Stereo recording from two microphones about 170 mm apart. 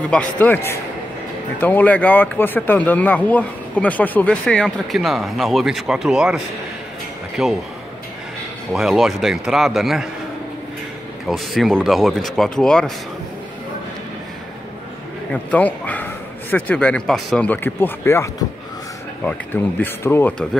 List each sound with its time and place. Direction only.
0.1 s speech: 10° left (ahead or behind)
8.7 s speech: centre (ahead or behind)
11.2 s speech: centre (ahead or behind)
15.5 s a man's voice: 10° left (ahead or behind)